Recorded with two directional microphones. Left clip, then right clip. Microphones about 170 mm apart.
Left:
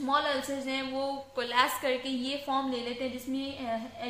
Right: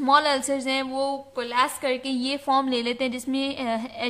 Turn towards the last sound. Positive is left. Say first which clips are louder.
# right 7 dB
turn(degrees=-45)  # may be behind; listen again after turning